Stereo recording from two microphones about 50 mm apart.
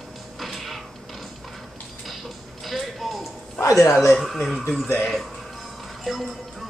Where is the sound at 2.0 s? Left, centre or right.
Centre.